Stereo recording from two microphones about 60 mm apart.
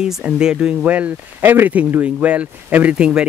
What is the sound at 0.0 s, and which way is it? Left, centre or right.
Speech, centre.